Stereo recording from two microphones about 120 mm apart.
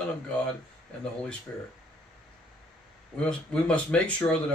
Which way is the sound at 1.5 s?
15° left (ahead or behind).